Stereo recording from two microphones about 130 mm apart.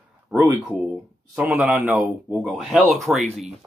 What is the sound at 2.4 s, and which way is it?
Speech, centre (ahead or behind).